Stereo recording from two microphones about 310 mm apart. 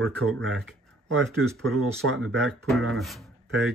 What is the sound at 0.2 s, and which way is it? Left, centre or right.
Speech, right.